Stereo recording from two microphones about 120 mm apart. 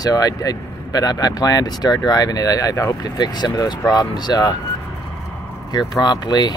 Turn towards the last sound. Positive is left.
turn(degrees=35)  # may be behind; listen again after turning